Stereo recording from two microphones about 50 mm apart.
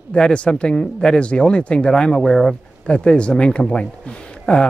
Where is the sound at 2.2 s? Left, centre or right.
Centre.